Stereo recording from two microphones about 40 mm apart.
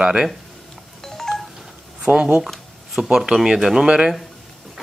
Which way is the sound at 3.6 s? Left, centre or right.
Centre.